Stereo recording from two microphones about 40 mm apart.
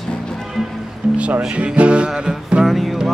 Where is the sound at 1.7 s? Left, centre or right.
Right.